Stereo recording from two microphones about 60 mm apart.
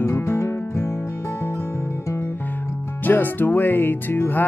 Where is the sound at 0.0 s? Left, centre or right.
Left.